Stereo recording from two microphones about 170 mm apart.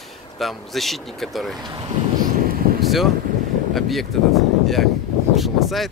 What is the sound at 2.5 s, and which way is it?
Vehicle, 60° right (ahead or behind).